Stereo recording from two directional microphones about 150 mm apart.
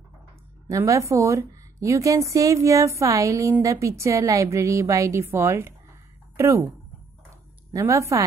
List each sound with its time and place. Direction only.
0.7 s a woman's voice: 20° right (ahead or behind)
7.7 s a woman's voice: 20° right (ahead or behind)